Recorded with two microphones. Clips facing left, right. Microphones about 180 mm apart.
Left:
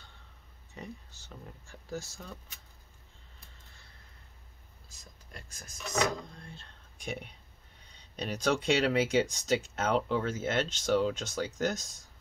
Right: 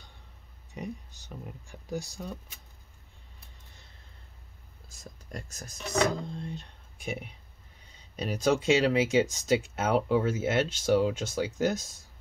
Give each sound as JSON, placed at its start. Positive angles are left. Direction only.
{"t": 0.7, "sound": "speech", "side_deg": -15}
{"t": 4.8, "sound": "speech", "side_deg": -40}
{"t": 6.3, "sound": "speech", "side_deg": -20}
{"t": 7.0, "sound": "speech", "side_deg": -5}